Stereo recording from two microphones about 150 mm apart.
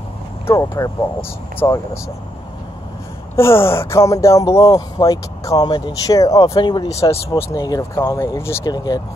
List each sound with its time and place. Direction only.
0.5 s speech: 20° left (ahead or behind)
3.3 s speech: 15° left (ahead or behind)
7.2 s speech: 20° left (ahead or behind)